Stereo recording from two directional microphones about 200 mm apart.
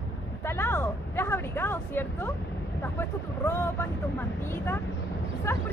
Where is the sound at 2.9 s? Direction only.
10° left (ahead or behind).